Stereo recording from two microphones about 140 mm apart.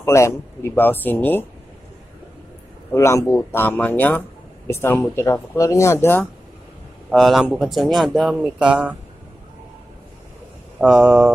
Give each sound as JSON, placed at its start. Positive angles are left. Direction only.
{"t": 0.0, "sound": "speech", "side_deg": 20}
{"t": 2.9, "sound": "speech", "side_deg": 20}
{"t": 7.1, "sound": "speech", "side_deg": 0}
{"t": 10.8, "sound": "speech", "side_deg": -5}